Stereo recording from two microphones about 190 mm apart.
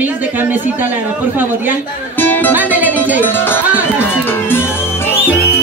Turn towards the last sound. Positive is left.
turn(degrees=10)  # may be behind; listen again after turning